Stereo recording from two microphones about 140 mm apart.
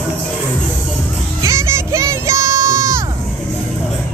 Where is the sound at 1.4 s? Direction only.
20° right (ahead or behind).